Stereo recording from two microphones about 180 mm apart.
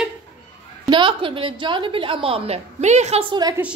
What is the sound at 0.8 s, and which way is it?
A woman's voice, 30° right (ahead or behind).